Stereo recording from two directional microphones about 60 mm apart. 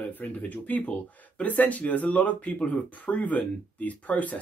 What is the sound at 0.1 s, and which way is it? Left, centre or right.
Speech, left.